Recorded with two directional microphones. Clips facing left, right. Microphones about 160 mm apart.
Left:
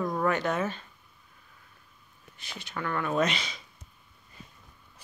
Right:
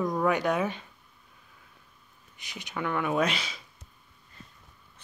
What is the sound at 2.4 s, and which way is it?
A woman's voice, 15° right (ahead or behind).